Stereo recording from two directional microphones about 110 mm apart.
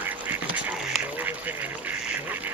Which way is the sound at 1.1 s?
15° right (ahead or behind).